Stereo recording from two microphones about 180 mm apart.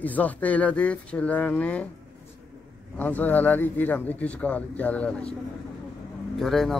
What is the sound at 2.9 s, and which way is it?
Speech, 10° left (ahead or behind).